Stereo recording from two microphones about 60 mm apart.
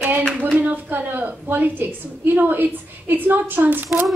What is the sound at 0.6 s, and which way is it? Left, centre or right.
A woman's voice, right.